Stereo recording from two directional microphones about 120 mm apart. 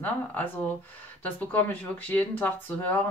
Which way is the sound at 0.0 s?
15° left (ahead or behind).